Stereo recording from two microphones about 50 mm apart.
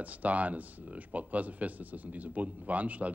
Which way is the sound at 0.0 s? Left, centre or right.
Right.